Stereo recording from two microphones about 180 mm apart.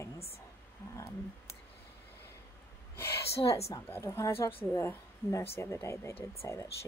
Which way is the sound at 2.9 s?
15° left (ahead or behind).